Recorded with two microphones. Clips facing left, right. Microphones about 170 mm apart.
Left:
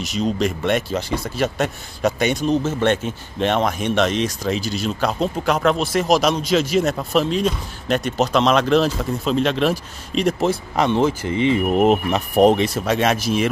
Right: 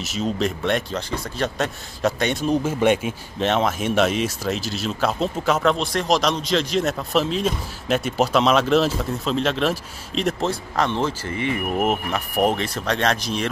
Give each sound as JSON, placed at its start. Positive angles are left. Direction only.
{"t": 0.0, "sound": "speech", "side_deg": -5}
{"t": 10.4, "sound": "speech", "side_deg": 15}
{"t": 12.7, "sound": "speech", "side_deg": 5}